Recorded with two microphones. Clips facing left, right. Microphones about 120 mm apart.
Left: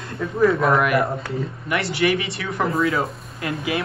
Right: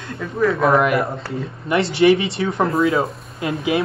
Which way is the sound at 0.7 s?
25° right (ahead or behind).